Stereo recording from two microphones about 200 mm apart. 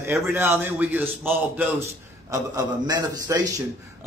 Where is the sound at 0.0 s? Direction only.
15° right (ahead or behind).